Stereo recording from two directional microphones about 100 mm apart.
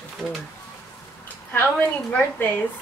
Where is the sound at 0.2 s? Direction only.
5° right (ahead or behind).